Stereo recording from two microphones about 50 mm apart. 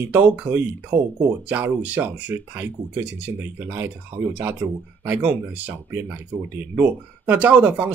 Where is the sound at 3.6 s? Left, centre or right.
Right.